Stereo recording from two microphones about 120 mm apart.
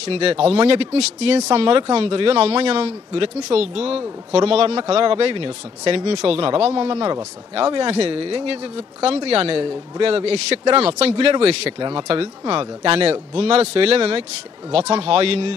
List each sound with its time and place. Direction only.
0.0 s speech: 55° right (ahead or behind)